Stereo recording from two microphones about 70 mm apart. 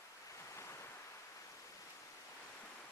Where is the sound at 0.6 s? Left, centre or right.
Left.